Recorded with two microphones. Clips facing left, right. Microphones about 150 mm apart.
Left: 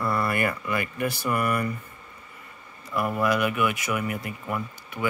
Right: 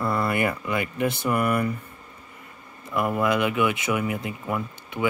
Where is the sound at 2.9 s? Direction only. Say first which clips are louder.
Right 1 dB; 20° right (ahead or behind).